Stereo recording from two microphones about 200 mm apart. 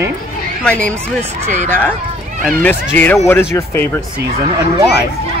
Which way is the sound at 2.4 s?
10° left (ahead or behind).